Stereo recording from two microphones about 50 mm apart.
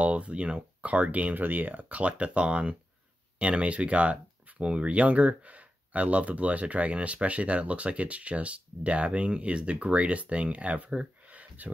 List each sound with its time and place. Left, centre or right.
0.0 s speech: right